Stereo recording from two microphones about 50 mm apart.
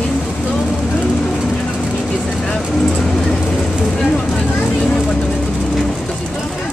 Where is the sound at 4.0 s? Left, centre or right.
Centre.